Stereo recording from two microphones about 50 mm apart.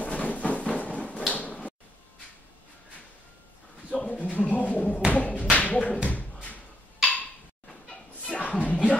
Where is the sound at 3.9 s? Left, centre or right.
Left.